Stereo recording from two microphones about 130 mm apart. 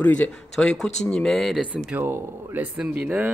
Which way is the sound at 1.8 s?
15° right (ahead or behind).